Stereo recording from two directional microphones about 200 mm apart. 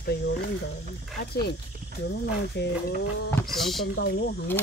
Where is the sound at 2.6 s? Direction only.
55° left (ahead or behind).